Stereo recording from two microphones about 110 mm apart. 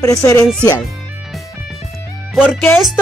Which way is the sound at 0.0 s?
30° left (ahead or behind).